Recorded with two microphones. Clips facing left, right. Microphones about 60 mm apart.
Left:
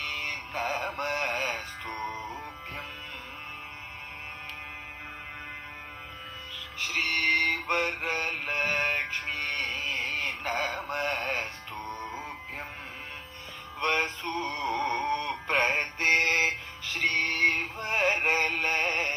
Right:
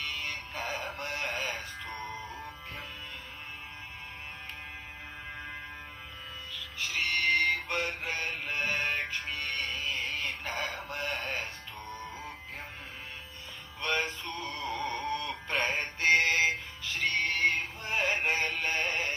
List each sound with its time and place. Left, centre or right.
0.0 s synthetic singing: left
6.8 s music: left
13.7 s male singing: left
14.7 s synthetic singing: left